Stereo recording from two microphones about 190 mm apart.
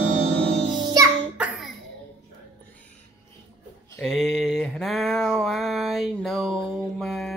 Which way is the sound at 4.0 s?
Centre (ahead or behind).